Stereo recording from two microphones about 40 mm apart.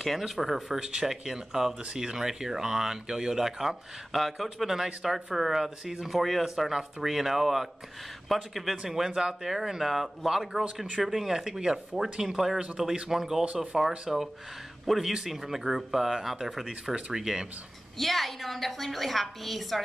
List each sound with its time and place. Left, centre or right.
0.0 s speech: centre
0.7 s speech: right
17.9 s speech: centre